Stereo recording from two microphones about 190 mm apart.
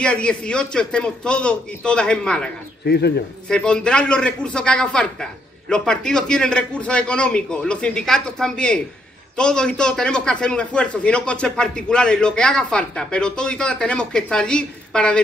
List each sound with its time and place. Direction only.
0.0 s a man's voice: 5° left (ahead or behind)
2.8 s a man's voice: 60° left (ahead or behind)
3.4 s a man's voice: 5° left (ahead or behind)